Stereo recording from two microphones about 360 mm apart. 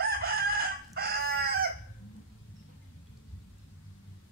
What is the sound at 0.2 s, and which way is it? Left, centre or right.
Chicken, right.